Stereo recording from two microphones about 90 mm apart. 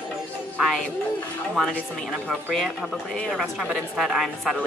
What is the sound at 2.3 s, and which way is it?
Speech, 5° right (ahead or behind).